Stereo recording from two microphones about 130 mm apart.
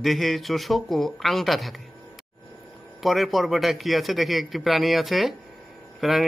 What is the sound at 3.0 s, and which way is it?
A man's voice, centre (ahead or behind).